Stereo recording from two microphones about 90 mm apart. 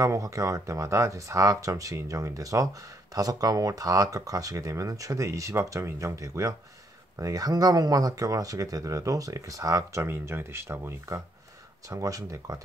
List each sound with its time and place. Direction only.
0.0 s speech: 40° right (ahead or behind)